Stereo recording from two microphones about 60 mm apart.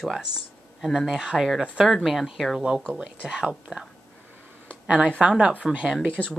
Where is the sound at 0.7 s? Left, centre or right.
Centre.